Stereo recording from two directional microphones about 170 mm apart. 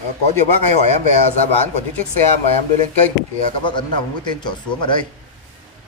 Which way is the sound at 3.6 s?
30° left (ahead or behind).